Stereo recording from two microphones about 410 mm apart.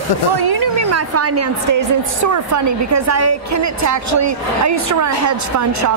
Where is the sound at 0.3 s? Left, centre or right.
Right.